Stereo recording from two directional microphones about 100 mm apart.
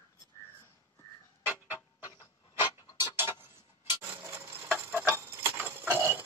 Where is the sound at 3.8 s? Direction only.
20° right (ahead or behind).